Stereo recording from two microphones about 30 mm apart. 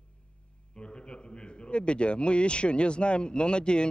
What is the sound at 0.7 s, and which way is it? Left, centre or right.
A man's voice, left.